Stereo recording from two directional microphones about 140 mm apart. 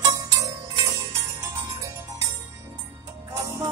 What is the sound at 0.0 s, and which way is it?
Music, 25° right (ahead or behind).